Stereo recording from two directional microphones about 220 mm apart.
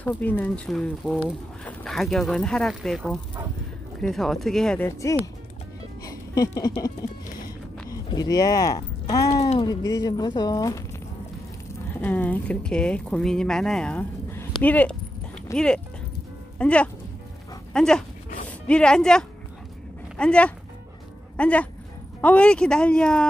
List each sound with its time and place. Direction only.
0.2 s speech: 5° left (ahead or behind)
6.0 s music: 15° left (ahead or behind)
6.7 s speech: 15° left (ahead or behind)
9.3 s speech: 30° left (ahead or behind)
10.0 s speech: 20° left (ahead or behind)